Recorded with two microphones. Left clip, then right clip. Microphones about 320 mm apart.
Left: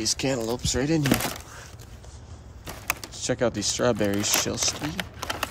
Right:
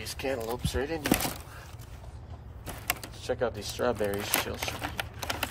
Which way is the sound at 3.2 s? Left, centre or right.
Left.